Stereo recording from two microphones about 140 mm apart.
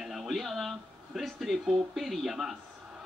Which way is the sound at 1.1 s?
Centre (ahead or behind).